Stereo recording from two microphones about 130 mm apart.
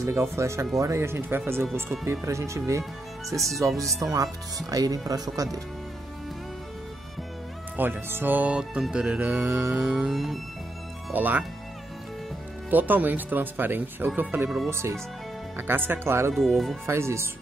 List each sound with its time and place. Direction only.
0.0 s speech: 20° right (ahead or behind)
2.8 s speech: centre (ahead or behind)
4.0 s speech: 25° right (ahead or behind)
7.7 s speech: 15° right (ahead or behind); by 10.4 s centre (ahead or behind)
11.1 s speech: 15° right (ahead or behind)
12.6 s speech: 15° right (ahead or behind)
16.3 s speech: centre (ahead or behind)
16.8 s speech: 20° right (ahead or behind)